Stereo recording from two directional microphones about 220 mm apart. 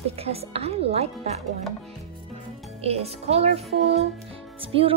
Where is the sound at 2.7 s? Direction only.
30° right (ahead or behind).